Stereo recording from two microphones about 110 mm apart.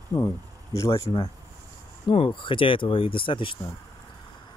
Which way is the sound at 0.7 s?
25° left (ahead or behind).